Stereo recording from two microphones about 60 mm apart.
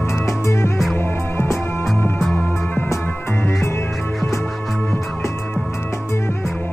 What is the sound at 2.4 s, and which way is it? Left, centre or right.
Music, left.